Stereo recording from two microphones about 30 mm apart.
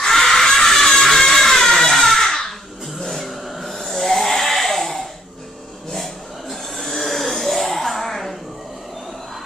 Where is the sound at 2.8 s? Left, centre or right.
Centre.